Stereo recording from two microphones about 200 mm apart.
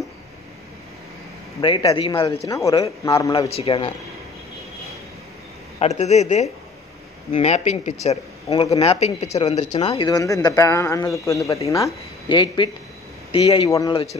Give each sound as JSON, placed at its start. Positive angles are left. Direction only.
{"t": 1.6, "sound": "a man's voice", "side_deg": 25}
{"t": 3.3, "sound": "speech", "side_deg": 30}
{"t": 5.8, "sound": "speech", "side_deg": 35}
{"t": 10.0, "sound": "a man's voice", "side_deg": 15}